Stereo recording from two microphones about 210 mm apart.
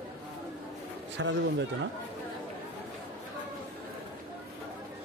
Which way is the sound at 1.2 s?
60° right (ahead or behind).